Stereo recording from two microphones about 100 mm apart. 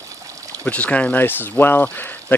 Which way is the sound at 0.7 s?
15° left (ahead or behind).